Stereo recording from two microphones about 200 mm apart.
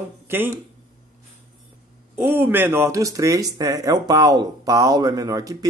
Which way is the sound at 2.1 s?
10° right (ahead or behind).